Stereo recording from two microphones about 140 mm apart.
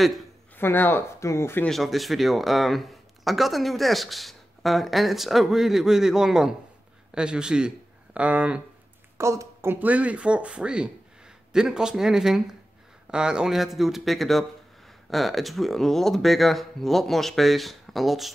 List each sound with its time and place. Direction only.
0.0 s a man's voice: centre (ahead or behind)
0.6 s speech: 15° left (ahead or behind)
1.7 s speech: centre (ahead or behind)
9.2 s speech: 20° right (ahead or behind); by 18.3 s centre (ahead or behind)